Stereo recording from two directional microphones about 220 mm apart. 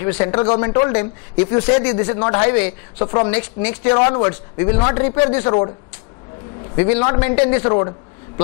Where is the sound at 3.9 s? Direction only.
20° left (ahead or behind).